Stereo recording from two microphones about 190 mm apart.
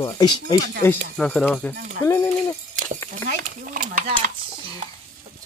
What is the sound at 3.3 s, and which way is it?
Speech, 45° right (ahead or behind).